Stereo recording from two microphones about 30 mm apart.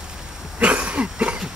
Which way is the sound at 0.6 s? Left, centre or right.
Right.